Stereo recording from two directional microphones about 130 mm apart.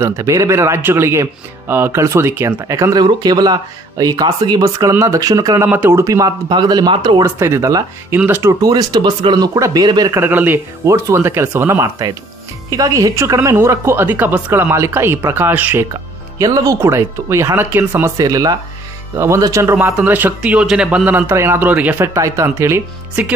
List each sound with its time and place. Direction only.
0.0 s speech: 25° right (ahead or behind)
5.7 s speech: 15° right (ahead or behind); by 7.2 s 40° right (ahead or behind)
7.2 s speech: 20° right (ahead or behind)
10.1 s speech: 15° right (ahead or behind)
16.3 s speech: 25° right (ahead or behind)
18.1 s a man's voice: 30° right (ahead or behind)